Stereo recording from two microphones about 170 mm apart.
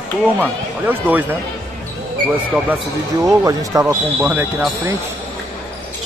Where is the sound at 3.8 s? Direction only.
10° right (ahead or behind).